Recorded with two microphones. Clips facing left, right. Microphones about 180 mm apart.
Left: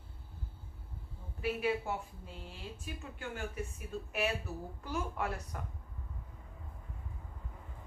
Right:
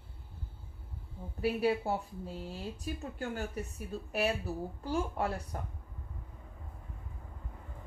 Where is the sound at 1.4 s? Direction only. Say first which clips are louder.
Right 4 dB; 35° right (ahead or behind).